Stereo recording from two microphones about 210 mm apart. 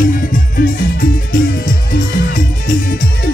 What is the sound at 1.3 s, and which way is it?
Music, 40° left (ahead or behind).